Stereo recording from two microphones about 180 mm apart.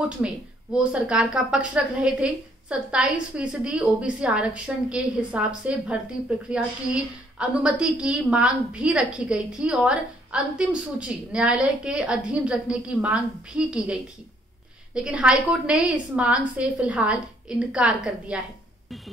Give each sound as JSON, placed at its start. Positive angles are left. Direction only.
{"t": 0.9, "sound": "a woman's voice", "side_deg": -5}
{"t": 15.0, "sound": "a woman's voice", "side_deg": -5}